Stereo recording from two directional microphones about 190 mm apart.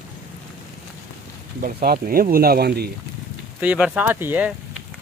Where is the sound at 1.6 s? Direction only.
50° right (ahead or behind).